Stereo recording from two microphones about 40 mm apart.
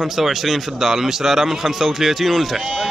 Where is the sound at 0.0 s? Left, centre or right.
Centre.